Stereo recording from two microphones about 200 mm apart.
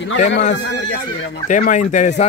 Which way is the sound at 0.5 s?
60° left (ahead or behind).